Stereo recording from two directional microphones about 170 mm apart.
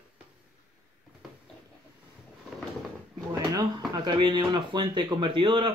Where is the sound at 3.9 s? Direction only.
25° right (ahead or behind).